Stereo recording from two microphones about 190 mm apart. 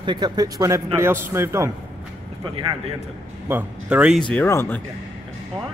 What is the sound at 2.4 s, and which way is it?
Speech, 25° right (ahead or behind).